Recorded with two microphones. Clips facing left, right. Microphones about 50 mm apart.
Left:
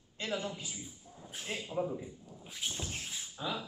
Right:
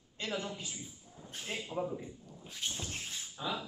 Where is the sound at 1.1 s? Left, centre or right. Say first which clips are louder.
Even; centre.